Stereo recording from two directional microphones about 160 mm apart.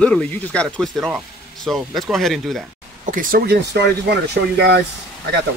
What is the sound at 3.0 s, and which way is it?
Speech, 55° right (ahead or behind).